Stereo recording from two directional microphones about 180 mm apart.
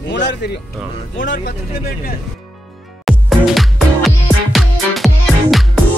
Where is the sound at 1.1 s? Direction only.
50° left (ahead or behind).